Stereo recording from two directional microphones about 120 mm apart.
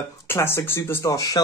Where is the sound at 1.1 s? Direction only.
35° left (ahead or behind).